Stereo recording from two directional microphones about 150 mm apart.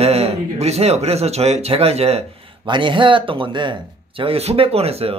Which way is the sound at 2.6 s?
30° right (ahead or behind).